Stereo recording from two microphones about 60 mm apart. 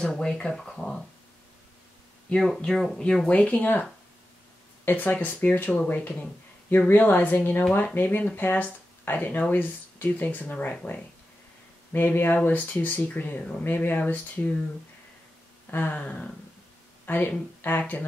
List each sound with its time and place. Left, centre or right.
0.0 s speech: centre
2.3 s speech: centre
3.3 s speech: left
4.8 s speech: left
15.7 s speech: left